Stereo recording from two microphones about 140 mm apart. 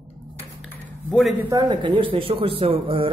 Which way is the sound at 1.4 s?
20° right (ahead or behind).